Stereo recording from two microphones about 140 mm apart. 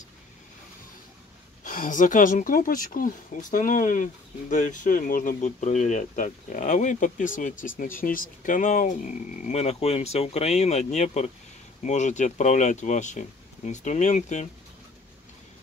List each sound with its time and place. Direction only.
1.6 s speech: 70° left (ahead or behind)
8.0 s speech: 85° left; by 14.5 s 60° left (ahead or behind)